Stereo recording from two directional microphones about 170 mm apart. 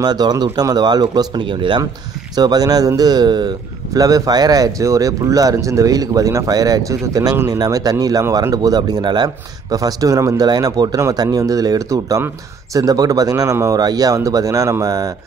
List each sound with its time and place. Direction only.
0.0 s speech: 25° right (ahead or behind)